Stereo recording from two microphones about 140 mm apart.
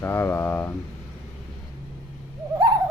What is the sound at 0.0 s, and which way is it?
Speech, 15° left (ahead or behind).